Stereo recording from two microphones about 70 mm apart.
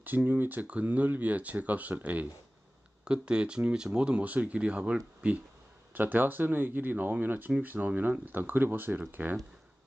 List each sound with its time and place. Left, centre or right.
0.0 s speech: right
5.9 s speech: right